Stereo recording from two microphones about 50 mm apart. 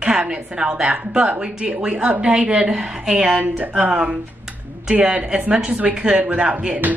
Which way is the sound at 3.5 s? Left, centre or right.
Right.